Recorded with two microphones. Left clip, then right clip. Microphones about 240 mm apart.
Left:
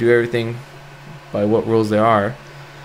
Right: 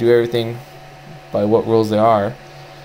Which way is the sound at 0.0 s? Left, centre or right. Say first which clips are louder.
Right 1 dB; centre.